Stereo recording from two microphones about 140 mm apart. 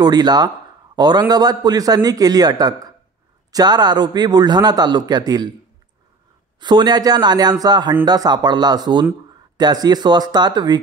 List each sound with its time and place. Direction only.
0.0 s a man's voice: 30° right (ahead or behind)
6.6 s speech: 30° right (ahead or behind)